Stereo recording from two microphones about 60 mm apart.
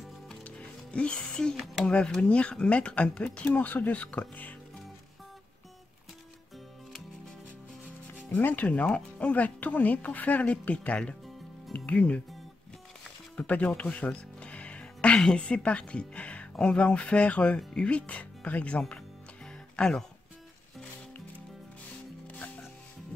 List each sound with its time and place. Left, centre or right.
0.9 s speech: centre
8.3 s speech: left
13.4 s speech: centre
22.3 s music: left